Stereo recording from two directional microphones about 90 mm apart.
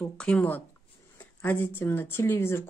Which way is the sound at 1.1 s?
20° left (ahead or behind).